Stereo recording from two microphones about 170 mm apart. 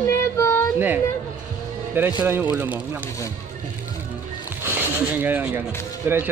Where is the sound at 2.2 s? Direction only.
10° right (ahead or behind).